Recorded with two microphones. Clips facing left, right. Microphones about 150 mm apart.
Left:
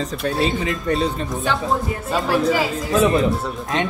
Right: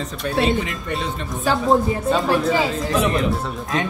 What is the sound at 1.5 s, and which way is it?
Speech, centre (ahead or behind).